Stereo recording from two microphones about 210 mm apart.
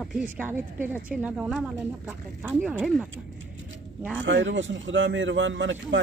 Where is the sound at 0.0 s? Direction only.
5° right (ahead or behind).